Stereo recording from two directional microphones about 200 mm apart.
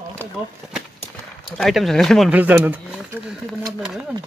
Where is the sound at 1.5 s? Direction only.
Centre (ahead or behind).